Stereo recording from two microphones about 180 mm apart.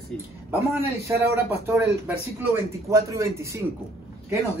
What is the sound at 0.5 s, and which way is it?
A man's voice, 15° right (ahead or behind).